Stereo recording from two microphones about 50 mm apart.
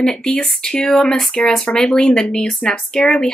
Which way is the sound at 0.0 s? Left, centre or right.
Centre.